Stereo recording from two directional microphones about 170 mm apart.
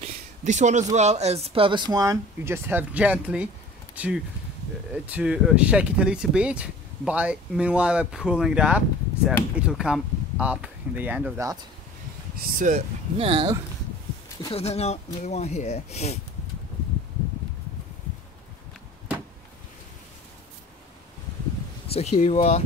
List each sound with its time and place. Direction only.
0.0 s a sound: 45° right (ahead or behind)
0.9 s speech: 40° right (ahead or behind); by 11.4 s 10° right (ahead or behind)
12.5 s speech: 50° right (ahead or behind)
13.2 s speech: 35° right (ahead or behind)
14.5 s speech: 40° left (ahead or behind)
21.9 s speech: 40° left (ahead or behind)